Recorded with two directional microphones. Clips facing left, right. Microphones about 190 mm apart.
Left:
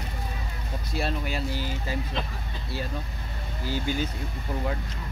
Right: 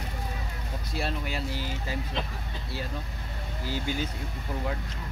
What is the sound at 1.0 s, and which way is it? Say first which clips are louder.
Speech: left 3 dB; 45° left (ahead or behind).